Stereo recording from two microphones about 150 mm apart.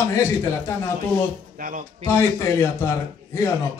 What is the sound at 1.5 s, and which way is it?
Speech, 60° right (ahead or behind).